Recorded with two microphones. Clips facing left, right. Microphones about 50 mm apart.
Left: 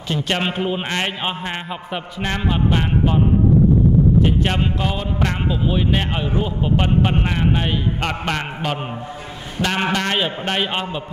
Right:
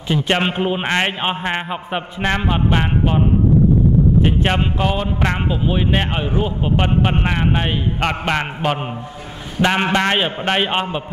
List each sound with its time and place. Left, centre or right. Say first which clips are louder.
0.1 s a man's voice: right 3 dB; centre
4.2 s a man's voice: right 1 dB; right